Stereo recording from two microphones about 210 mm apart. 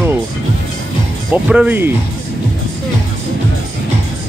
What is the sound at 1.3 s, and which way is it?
Speech, 5° right (ahead or behind).